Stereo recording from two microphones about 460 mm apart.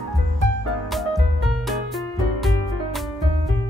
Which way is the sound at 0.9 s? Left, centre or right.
Centre.